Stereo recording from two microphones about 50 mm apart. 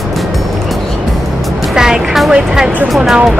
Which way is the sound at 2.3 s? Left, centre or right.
Centre.